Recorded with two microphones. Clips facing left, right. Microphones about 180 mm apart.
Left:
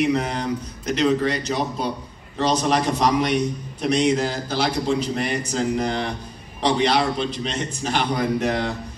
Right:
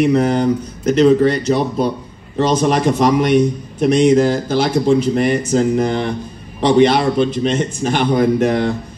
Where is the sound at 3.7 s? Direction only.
50° right (ahead or behind).